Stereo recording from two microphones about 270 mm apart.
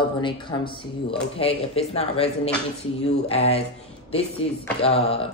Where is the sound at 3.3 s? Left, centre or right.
Left.